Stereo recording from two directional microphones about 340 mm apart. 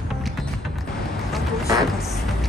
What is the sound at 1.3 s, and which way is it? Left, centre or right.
Music, centre.